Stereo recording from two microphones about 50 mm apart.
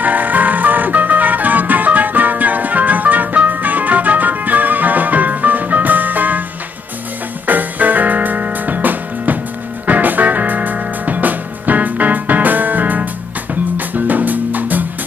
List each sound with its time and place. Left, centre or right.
0.0 s music: right
7.4 s music: right